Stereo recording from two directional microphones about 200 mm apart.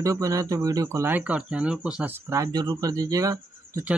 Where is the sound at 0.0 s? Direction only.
15° right (ahead or behind).